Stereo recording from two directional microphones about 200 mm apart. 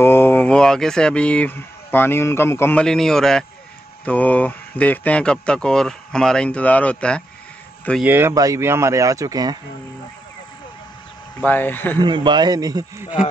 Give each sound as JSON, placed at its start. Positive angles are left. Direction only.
{"t": 0.0, "sound": "speech", "side_deg": 10}
{"t": 8.0, "sound": "speech", "side_deg": -10}
{"t": 11.4, "sound": "speech", "side_deg": 10}
{"t": 12.0, "sound": "a man's voice", "side_deg": -20}